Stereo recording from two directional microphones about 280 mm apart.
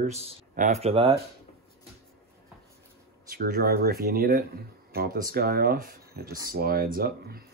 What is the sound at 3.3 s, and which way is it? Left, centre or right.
Speech, right.